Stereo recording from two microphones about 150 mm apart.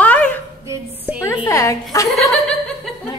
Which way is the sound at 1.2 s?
20° left (ahead or behind).